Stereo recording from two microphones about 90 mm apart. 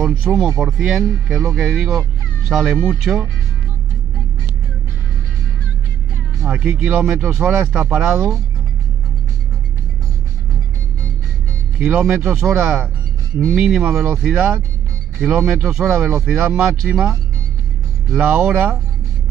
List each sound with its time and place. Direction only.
0.0 s speech: 10° right (ahead or behind)
6.4 s speech: 10° right (ahead or behind)
11.8 s speech: 10° right (ahead or behind)
18.1 s speech: 15° right (ahead or behind)